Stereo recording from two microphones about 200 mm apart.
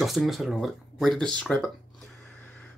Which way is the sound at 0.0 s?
Centre (ahead or behind).